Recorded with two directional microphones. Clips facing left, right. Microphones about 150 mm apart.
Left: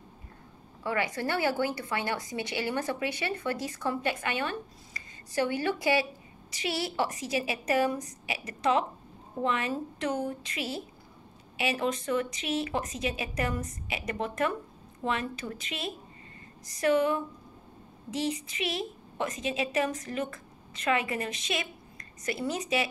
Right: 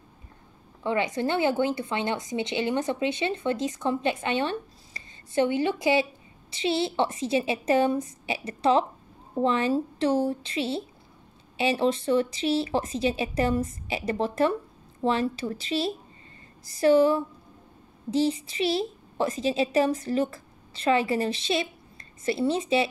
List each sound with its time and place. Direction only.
0.8 s a woman's voice: 20° right (ahead or behind)